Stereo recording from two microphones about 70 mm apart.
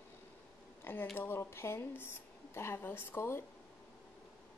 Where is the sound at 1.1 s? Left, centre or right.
Left.